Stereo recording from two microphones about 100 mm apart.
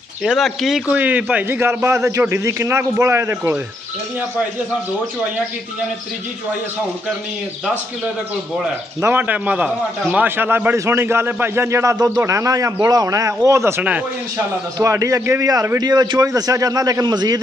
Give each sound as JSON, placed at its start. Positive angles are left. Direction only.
{"t": 0.2, "sound": "speech", "side_deg": 0}
{"t": 0.8, "sound": "a man's voice", "side_deg": -15}
{"t": 9.0, "sound": "a man's voice", "side_deg": -20}